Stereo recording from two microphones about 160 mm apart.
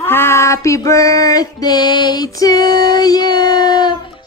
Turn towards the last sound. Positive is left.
turn(degrees=30)  # may be behind; listen again after turning